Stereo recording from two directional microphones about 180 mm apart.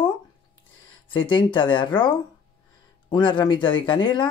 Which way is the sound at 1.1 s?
25° left (ahead or behind).